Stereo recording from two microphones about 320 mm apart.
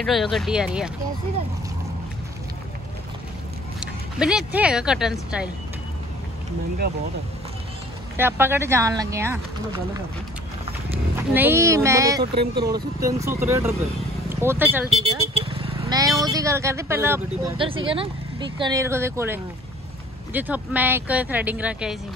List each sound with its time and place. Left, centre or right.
0.0 s speech: centre
3.8 s speech: centre
8.2 s speech: centre
11.3 s speech: centre
14.9 s vehicle: centre
16.3 s speech: centre